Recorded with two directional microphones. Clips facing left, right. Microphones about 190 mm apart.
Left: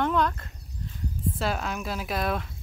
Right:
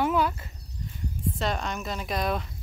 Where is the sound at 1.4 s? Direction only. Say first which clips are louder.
Even; 5° left (ahead or behind).